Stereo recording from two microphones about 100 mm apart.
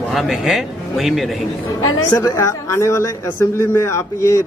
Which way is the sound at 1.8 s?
30° left (ahead or behind).